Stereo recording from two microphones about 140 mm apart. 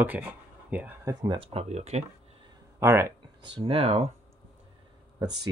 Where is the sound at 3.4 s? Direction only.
40° right (ahead or behind).